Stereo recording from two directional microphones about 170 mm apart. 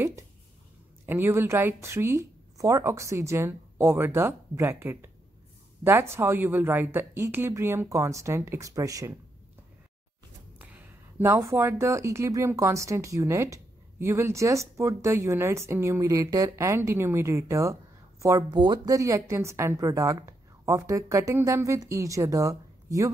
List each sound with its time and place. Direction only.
1.0 s speech: 15° right (ahead or behind)
10.6 s a woman's voice: 10° right (ahead or behind)